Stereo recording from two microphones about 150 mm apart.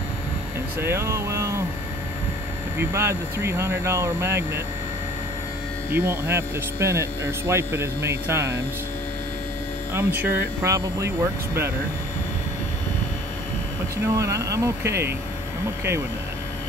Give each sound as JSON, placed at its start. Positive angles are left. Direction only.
{"t": 0.7, "sound": "hum", "side_deg": -15}
{"t": 2.8, "sound": "hum", "side_deg": -15}
{"t": 5.9, "sound": "hum", "side_deg": -15}
{"t": 9.9, "sound": "hum", "side_deg": -15}
{"t": 14.0, "sound": "speech", "side_deg": -20}